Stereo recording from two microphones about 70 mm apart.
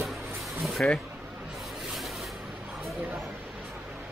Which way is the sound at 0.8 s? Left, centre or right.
Centre.